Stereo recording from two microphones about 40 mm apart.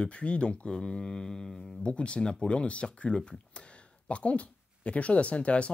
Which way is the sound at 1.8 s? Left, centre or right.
Left.